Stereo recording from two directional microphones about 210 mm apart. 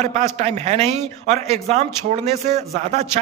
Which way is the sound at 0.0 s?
35° right (ahead or behind).